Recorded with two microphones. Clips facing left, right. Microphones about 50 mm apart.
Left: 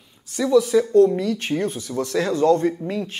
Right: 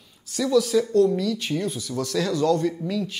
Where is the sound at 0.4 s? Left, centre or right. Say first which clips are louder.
Left 3 dB; centre.